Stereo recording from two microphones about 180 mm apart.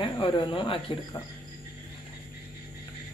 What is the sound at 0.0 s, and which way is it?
Speech, 25° left (ahead or behind).